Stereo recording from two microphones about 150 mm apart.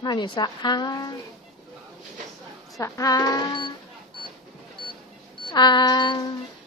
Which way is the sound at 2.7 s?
20° left (ahead or behind).